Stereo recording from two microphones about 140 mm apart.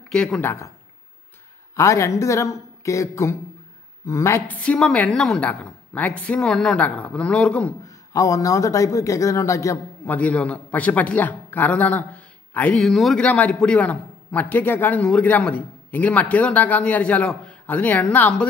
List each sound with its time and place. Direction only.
0.1 s speech: 5° left (ahead or behind)
0.5 s speech: 20° left (ahead or behind)
1.8 s speech: 20° left (ahead or behind)
4.6 s a man's voice: 5° left (ahead or behind)
7.8 s speech: 25° left (ahead or behind)
10.0 s a man's voice: 10° left (ahead or behind)